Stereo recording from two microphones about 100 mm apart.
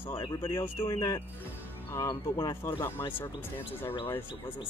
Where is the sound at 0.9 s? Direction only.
30° left (ahead or behind).